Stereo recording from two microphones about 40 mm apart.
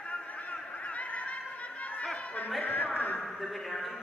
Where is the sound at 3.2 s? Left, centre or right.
Centre.